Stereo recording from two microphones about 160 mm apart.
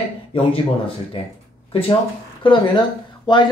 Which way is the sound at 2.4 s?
30° left (ahead or behind).